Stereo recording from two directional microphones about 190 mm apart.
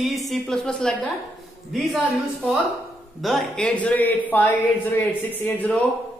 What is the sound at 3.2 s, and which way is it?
A man's voice, centre (ahead or behind).